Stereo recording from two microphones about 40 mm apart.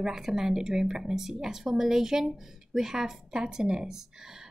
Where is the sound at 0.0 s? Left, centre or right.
Centre.